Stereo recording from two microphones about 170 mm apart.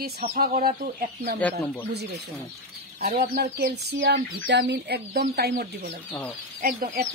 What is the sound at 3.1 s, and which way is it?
Speech, 70° right (ahead or behind).